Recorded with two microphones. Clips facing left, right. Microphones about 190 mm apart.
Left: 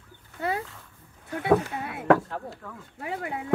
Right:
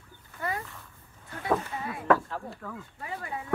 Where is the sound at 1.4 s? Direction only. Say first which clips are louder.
Left 6 dB; 65° left (ahead or behind).